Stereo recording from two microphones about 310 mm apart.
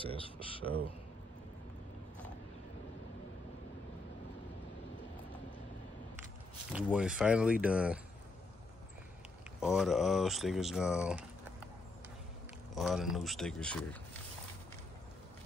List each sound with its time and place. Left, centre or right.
0.0 s speech: centre
6.7 s speech: centre
9.6 s speech: centre
12.7 s speech: centre